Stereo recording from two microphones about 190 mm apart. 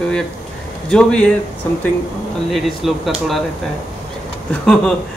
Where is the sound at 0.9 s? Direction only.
5° left (ahead or behind).